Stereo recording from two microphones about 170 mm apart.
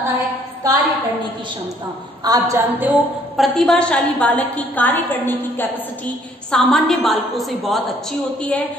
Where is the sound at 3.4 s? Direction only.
Centre (ahead or behind).